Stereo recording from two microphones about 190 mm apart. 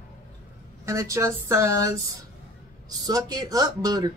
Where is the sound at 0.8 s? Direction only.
15° right (ahead or behind).